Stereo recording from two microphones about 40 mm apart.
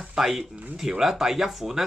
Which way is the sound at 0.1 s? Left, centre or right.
Centre.